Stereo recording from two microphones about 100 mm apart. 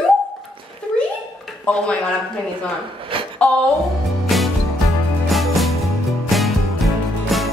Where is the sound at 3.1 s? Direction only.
60° right (ahead or behind).